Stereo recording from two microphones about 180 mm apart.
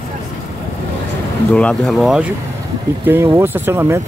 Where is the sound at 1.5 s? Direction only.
5° left (ahead or behind).